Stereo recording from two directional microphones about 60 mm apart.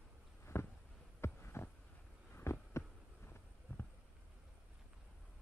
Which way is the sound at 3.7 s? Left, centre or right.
Left.